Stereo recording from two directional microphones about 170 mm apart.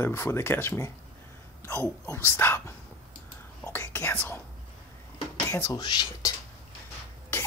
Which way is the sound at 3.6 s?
15° left (ahead or behind).